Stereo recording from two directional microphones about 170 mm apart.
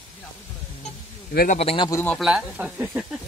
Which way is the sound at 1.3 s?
65° left (ahead or behind).